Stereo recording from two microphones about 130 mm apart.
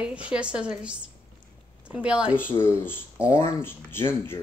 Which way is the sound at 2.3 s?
15° left (ahead or behind).